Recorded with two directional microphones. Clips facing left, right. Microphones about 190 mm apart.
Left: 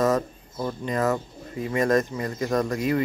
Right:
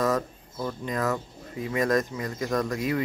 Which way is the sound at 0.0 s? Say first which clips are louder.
Left 3 dB; 20° left (ahead or behind).